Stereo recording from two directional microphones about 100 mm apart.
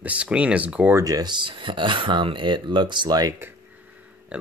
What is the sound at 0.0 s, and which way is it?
Speech, 10° right (ahead or behind).